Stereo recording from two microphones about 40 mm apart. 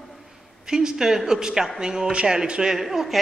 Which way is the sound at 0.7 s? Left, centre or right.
Centre.